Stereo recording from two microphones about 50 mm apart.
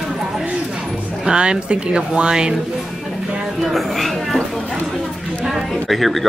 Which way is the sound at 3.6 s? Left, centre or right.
Centre.